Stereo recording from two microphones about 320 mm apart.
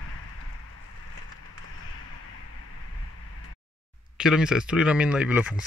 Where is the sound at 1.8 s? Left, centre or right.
Left.